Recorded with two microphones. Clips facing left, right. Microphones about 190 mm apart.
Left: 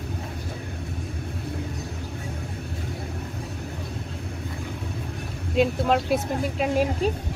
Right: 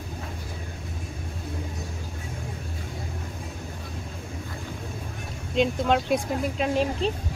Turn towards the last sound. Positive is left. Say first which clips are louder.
# left 2 dB
turn(degrees=5)  # may be behind; listen again after turning